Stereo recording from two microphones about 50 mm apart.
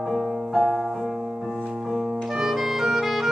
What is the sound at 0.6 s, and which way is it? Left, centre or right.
Music, centre.